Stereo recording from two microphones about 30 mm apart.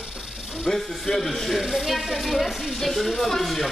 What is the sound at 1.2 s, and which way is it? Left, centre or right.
Speech, centre.